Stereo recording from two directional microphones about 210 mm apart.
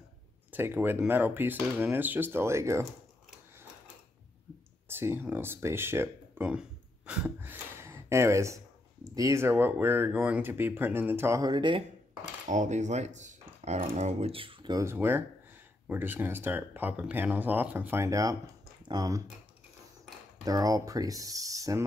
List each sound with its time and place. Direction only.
0.5 s speech: 10° right (ahead or behind)
4.8 s speech: 10° right (ahead or behind)
12.4 s speech: 35° right (ahead or behind); by 19.2 s 15° right (ahead or behind)
20.4 s speech: 15° right (ahead or behind)